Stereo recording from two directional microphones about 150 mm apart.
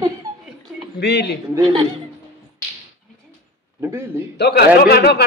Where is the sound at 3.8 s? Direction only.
15° right (ahead or behind).